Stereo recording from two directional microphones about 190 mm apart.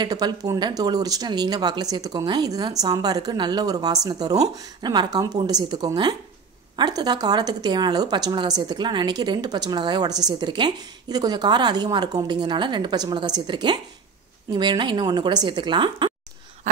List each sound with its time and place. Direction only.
0.0 s speech: 20° right (ahead or behind)